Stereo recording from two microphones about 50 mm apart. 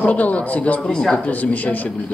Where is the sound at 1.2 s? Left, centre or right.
Left.